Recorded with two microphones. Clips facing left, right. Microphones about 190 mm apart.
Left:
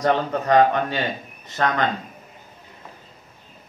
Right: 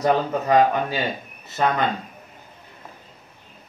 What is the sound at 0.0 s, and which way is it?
Speech, 5° right (ahead or behind).